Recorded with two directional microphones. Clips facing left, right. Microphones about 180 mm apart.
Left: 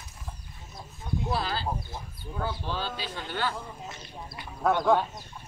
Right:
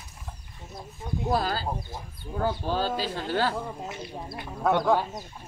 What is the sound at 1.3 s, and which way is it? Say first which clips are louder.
Speech: right 5 dB; 45° right (ahead or behind).